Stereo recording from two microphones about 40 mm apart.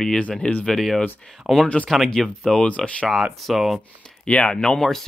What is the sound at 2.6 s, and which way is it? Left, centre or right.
Speech, left.